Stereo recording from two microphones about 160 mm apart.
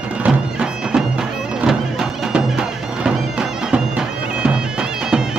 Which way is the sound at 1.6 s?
Centre (ahead or behind).